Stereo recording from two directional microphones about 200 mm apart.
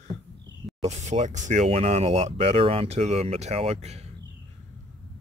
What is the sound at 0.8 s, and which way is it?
Speech, 35° right (ahead or behind).